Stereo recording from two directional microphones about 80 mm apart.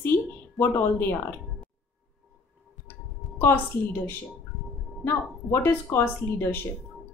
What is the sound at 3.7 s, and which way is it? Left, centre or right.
Speech, left.